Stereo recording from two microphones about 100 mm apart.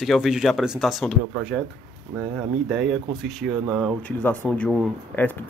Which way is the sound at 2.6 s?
5° right (ahead or behind).